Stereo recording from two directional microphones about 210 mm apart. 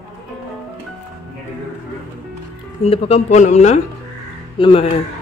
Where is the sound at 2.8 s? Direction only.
30° left (ahead or behind).